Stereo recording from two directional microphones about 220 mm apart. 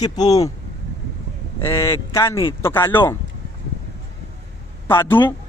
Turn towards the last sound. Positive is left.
turn(degrees=10)  # may be behind; listen again after turning